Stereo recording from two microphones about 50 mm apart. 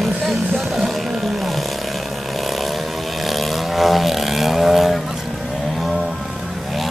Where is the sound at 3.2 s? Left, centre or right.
Centre.